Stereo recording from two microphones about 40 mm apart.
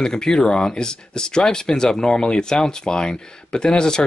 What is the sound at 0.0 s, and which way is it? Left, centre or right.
Speech, centre.